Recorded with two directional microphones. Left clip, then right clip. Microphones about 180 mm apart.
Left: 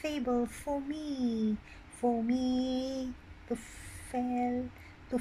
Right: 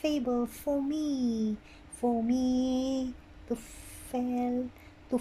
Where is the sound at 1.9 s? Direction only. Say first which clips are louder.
Right 2 dB; 15° right (ahead or behind).